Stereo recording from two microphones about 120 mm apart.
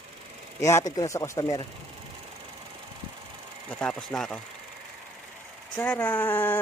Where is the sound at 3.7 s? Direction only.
5° left (ahead or behind).